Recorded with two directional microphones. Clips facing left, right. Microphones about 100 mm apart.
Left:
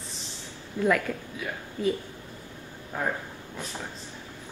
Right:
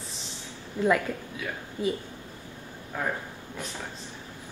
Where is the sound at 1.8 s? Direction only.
25° right (ahead or behind).